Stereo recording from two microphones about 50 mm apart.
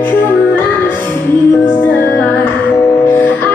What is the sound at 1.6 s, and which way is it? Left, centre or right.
Music, left.